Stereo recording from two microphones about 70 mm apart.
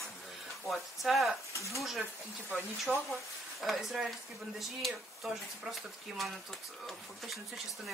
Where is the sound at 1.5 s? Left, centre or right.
Left.